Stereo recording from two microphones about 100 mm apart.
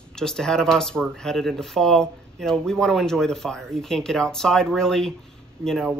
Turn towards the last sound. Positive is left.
turn(degrees=0)  # may be behind; listen again after turning